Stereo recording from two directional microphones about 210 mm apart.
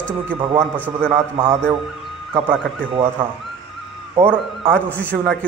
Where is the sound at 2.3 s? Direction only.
25° right (ahead or behind).